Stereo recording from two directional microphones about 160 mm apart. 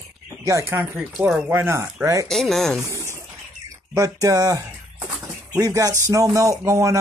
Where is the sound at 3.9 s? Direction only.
20° right (ahead or behind).